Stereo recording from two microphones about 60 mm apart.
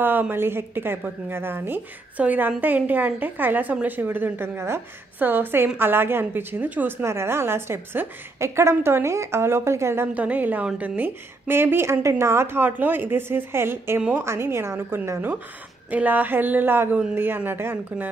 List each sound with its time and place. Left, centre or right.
0.0 s speech: right
2.1 s a woman's voice: right
6.6 s a woman's voice: right
7.0 s a woman's voice: right
10.1 s a woman's voice: right
11.4 s a woman's voice: right
15.9 s speech: right